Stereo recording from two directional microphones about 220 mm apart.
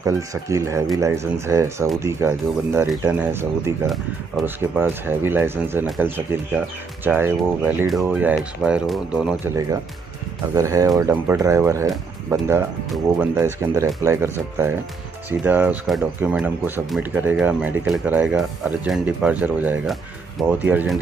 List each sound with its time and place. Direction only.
0.0 s speech: 15° right (ahead or behind)
10.5 s speech: 15° right (ahead or behind)